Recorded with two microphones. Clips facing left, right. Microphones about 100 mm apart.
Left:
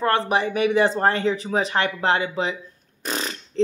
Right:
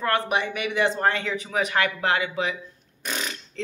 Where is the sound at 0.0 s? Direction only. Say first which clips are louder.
Left 3 dB; 30° left (ahead or behind).